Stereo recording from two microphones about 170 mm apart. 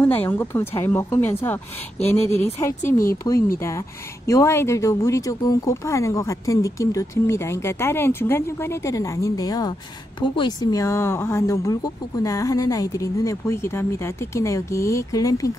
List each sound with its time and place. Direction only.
0.0 s speech: 10° left (ahead or behind)
3.5 s speech: 15° left (ahead or behind)